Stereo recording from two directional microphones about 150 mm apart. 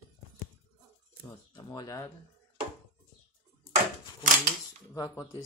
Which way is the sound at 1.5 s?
25° left (ahead or behind).